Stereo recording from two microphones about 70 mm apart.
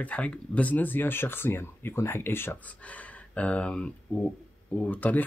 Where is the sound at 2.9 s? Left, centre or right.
Centre.